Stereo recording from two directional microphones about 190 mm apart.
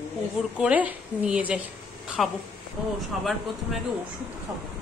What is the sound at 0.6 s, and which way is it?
A woman's voice, 10° right (ahead or behind).